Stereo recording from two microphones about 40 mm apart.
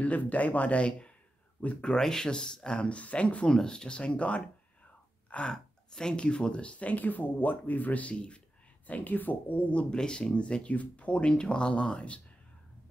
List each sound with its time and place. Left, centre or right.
0.0 s speech: left
2.0 s speech: centre
2.9 s speech: left
3.4 s speech: centre
5.5 s speech: centre
8.8 s speech: left
9.7 s speech: left
9.9 s speech: centre